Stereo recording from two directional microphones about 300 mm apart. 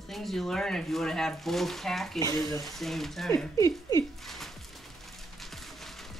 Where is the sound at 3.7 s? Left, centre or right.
Centre.